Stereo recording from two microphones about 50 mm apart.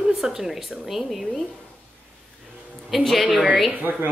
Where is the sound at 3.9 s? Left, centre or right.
Right.